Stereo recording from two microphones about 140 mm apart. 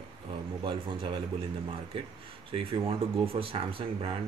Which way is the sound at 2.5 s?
40° right (ahead or behind).